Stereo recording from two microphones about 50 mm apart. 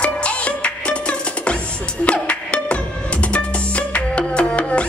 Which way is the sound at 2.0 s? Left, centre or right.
Left.